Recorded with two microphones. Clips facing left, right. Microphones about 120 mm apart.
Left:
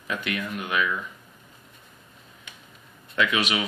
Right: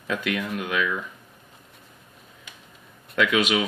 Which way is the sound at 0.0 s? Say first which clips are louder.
Right 3 dB; 90° right.